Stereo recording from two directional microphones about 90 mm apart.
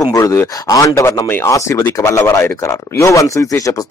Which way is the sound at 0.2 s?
35° left (ahead or behind).